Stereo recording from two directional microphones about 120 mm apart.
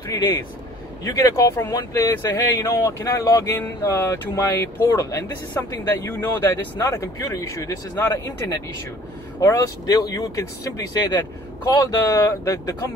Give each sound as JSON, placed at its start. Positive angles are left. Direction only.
{"t": 0.1, "sound": "speech", "side_deg": 30}
{"t": 9.4, "sound": "speech", "side_deg": 25}
{"t": 11.7, "sound": "speech", "side_deg": 30}